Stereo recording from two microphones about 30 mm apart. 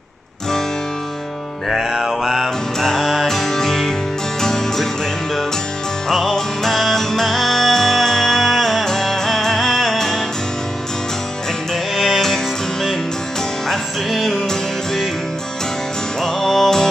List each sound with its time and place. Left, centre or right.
1.7 s mantra: centre
2.8 s music: centre
6.0 s music: centre
9.7 s music: centre
9.9 s music: centre
11.7 s music: centre
14.1 s music: centre
16.2 s music: centre